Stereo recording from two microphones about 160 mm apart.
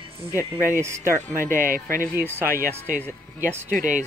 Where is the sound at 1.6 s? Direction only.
60° right (ahead or behind).